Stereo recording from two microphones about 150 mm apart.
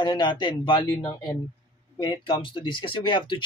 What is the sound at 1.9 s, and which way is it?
Speech, 30° left (ahead or behind).